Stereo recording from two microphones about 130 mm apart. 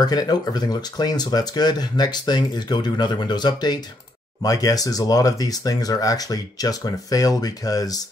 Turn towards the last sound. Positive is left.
turn(degrees=30)  # may be behind; listen again after turning